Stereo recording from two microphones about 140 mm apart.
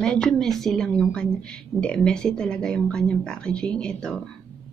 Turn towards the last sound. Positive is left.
turn(degrees=5)  # may be behind; listen again after turning